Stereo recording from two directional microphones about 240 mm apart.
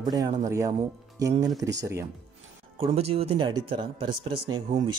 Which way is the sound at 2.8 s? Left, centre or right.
Right.